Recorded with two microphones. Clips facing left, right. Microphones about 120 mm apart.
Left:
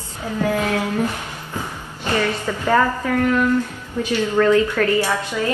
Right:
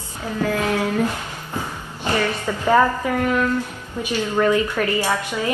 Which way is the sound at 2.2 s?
15° right (ahead or behind).